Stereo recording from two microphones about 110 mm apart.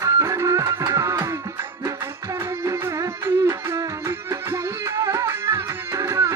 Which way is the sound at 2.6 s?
25° right (ahead or behind).